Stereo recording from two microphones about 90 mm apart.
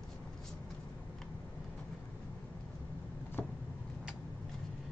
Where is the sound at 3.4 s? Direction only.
20° left (ahead or behind).